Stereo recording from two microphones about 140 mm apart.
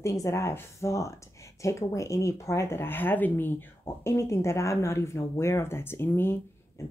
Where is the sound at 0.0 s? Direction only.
20° left (ahead or behind).